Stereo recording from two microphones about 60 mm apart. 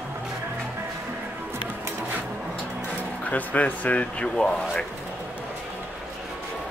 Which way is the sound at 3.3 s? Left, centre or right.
Left.